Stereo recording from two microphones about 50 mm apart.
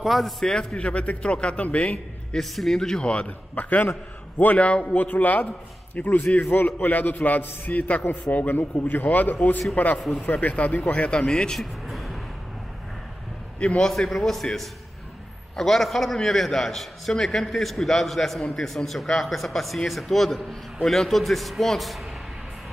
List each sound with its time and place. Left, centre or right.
0.0 s a man's voice: centre
0.7 s speech: left
2.3 s a man's voice: centre
3.1 s speech: left
4.4 s a man's voice: left
9.9 s a man's voice: centre
10.4 s speech: left
11.6 s a sound: centre
13.6 s a man's voice: left
13.8 s a man's voice: centre